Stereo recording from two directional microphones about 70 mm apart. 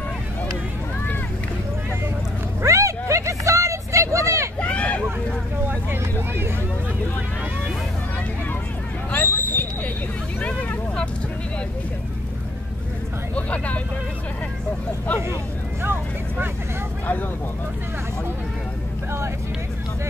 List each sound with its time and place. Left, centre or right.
2.6 s vehicle: right
4.6 s hubbub: centre
5.7 s vehicle: right
9.1 s a sound: left
10.4 s vehicle: left
13.3 s vehicle: centre
15.8 s vehicle: right